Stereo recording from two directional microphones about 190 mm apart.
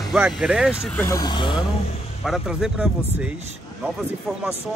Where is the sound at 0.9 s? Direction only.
15° left (ahead or behind).